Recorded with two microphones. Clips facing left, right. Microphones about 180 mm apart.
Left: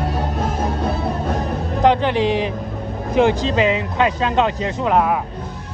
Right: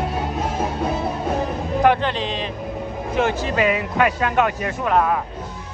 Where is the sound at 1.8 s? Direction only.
15° left (ahead or behind).